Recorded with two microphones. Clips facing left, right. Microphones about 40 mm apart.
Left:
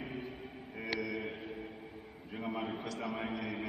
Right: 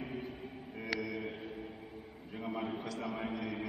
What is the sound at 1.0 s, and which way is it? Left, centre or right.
Mantra, centre.